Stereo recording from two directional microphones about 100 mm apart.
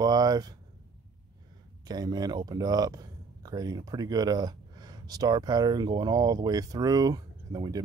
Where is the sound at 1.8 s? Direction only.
40° right (ahead or behind).